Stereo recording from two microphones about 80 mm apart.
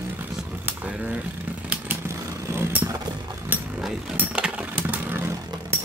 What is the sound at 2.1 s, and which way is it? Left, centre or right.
Vehicle, right.